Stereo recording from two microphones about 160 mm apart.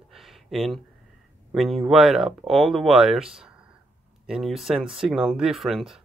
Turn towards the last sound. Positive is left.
turn(degrees=0)  # may be behind; listen again after turning